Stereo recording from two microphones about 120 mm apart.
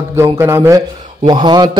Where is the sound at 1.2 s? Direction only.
35° right (ahead or behind).